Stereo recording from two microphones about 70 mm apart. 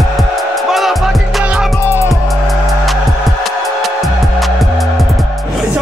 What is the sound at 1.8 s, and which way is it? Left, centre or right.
Music, left.